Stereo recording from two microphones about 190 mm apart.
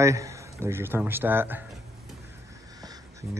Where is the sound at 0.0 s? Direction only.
15° right (ahead or behind).